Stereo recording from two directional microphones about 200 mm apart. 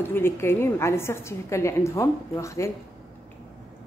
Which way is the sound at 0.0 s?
10° left (ahead or behind).